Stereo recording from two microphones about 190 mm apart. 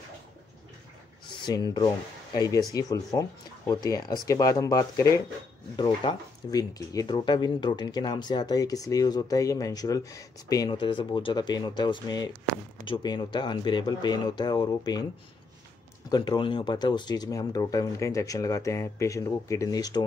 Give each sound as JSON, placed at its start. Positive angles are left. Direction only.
{"t": 1.4, "sound": "speech", "side_deg": 20}
{"t": 16.1, "sound": "speech", "side_deg": 25}